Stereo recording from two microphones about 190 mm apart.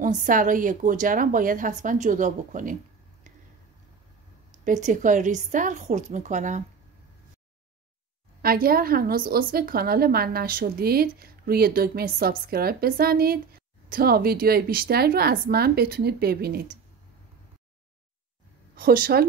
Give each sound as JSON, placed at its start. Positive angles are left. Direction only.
{"t": 0.0, "sound": "speech", "side_deg": -45}
{"t": 4.6, "sound": "a woman's voice", "side_deg": -40}
{"t": 8.4, "sound": "speech", "side_deg": -50}
{"t": 18.8, "sound": "speech", "side_deg": -50}